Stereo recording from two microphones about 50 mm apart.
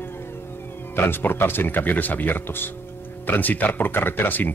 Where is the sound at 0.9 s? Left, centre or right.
Left.